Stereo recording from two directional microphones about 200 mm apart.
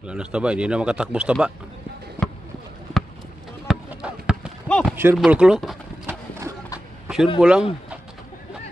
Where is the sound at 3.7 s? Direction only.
5° right (ahead or behind).